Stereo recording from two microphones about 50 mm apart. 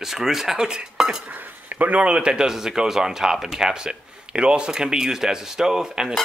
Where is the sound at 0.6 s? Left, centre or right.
Centre.